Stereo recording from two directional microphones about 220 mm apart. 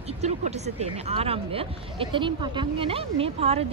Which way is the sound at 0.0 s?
30° right (ahead or behind).